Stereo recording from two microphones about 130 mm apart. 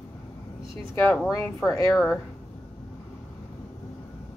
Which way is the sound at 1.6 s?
25° left (ahead or behind).